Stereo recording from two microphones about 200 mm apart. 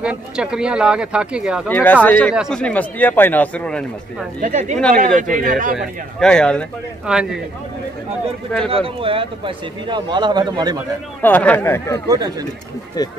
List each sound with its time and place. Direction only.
0.0 s speech: 5° right (ahead or behind)
1.7 s speech: 10° left (ahead or behind)
4.4 s speech: 40° right (ahead or behind)
6.1 s speech: 5° left (ahead or behind)
8.6 s speech: 25° right (ahead or behind)
11.2 s speech: 10° left (ahead or behind)
12.1 s speech: 20° right (ahead or behind)